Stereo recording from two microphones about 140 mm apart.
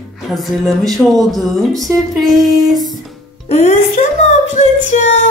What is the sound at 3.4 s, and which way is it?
Speech, 50° left (ahead or behind).